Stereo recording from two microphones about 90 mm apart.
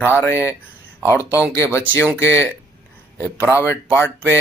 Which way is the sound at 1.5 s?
30° left (ahead or behind).